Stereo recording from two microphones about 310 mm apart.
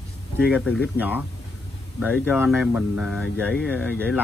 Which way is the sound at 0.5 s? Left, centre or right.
Centre.